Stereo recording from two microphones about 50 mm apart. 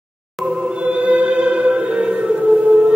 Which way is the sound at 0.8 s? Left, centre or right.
Right.